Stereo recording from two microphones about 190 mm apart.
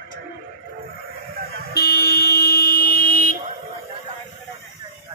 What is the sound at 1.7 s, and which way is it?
Vehicle, 55° left (ahead or behind).